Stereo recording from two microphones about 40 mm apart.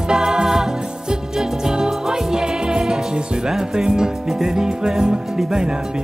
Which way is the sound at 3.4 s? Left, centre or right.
Centre.